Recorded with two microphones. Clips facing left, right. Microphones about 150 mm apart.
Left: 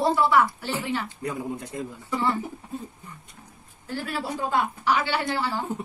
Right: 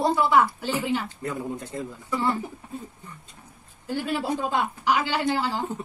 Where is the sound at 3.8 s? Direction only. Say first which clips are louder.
Right 4 dB; 15° right (ahead or behind).